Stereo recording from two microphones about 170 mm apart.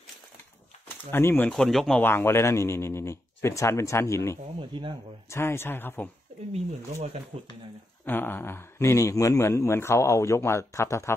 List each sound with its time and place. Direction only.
1.1 s speech: 15° left (ahead or behind)
1.5 s speech: centre (ahead or behind)
4.6 s speech: 30° right (ahead or behind)
5.3 s speech: 15° left (ahead or behind)
7.3 s speech: 40° right (ahead or behind)
8.0 s speech: 10° left (ahead or behind)